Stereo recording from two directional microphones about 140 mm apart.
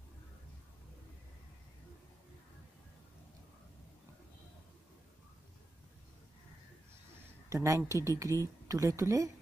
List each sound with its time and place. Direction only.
7.4 s speech: 25° right (ahead or behind)